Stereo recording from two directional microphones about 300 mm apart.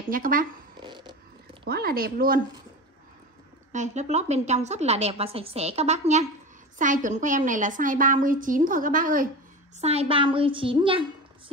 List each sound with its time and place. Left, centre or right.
0.1 s a woman's voice: right
0.7 s zipper: centre
1.6 s a woman's voice: right
3.7 s a woman's voice: right